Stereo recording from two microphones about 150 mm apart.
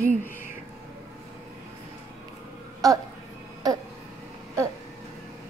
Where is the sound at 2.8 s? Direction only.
25° right (ahead or behind).